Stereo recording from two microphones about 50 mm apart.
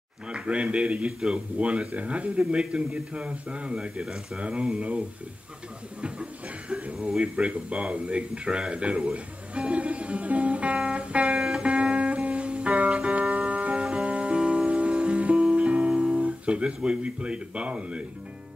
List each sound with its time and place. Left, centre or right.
0.3 s speech: right
5.9 s a sound: centre
7.0 s speech: centre
10.9 s music: right
11.3 s music: centre
11.6 s music: right
16.0 s speech: right